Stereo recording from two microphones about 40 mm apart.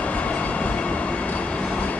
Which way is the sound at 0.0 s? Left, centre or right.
Left.